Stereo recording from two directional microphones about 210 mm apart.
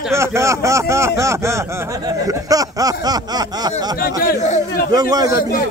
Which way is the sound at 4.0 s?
40° left (ahead or behind).